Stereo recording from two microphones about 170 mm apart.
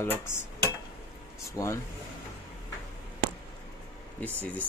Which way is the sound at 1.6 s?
20° left (ahead or behind).